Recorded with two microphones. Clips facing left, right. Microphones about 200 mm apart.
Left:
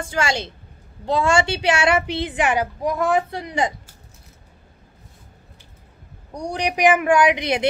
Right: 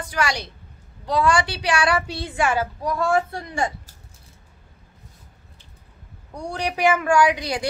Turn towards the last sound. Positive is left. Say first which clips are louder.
# left 2 dB
turn(degrees=20)  # may be behind; listen again after turning